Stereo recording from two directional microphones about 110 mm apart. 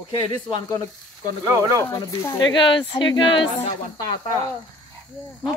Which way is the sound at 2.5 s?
45° left (ahead or behind).